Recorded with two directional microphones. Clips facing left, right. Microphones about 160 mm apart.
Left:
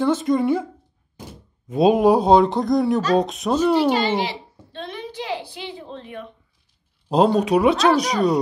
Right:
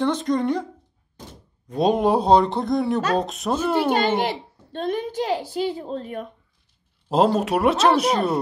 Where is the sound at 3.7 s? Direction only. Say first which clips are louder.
Left 1 dB; 50° right (ahead or behind).